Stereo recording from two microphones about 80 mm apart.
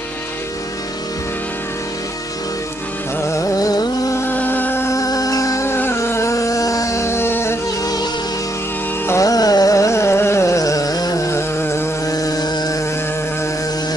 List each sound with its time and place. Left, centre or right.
3.3 s music: left
4.1 s music: left
4.8 s music: left
5.8 s a sound: left
7.8 s music: left
9.2 s carnatic music: left
12.1 s a sound: left